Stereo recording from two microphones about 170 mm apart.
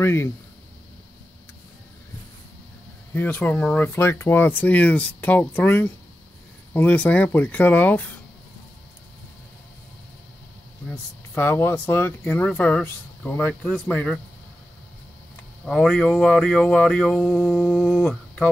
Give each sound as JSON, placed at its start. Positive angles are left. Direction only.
{"t": 0.0, "sound": "speech", "side_deg": 15}
{"t": 3.2, "sound": "speech", "side_deg": 10}
{"t": 11.3, "sound": "speech", "side_deg": 15}
{"t": 15.6, "sound": "speech", "side_deg": 0}